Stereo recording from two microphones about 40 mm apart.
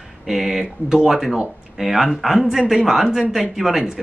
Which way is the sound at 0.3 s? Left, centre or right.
Centre.